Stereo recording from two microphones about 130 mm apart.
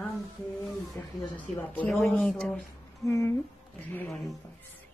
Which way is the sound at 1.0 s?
15° left (ahead or behind).